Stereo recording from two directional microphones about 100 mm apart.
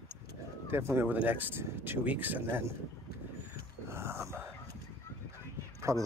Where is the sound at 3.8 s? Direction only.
25° right (ahead or behind).